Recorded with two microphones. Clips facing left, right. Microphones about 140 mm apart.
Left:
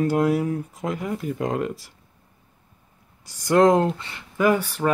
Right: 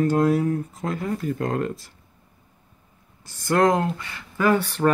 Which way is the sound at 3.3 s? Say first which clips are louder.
Left 3 dB; 15° left (ahead or behind).